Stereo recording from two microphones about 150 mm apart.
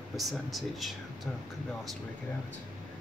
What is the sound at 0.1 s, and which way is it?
Speech, centre (ahead or behind).